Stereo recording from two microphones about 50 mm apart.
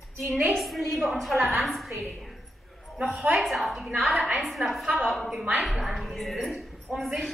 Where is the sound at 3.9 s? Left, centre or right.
Centre.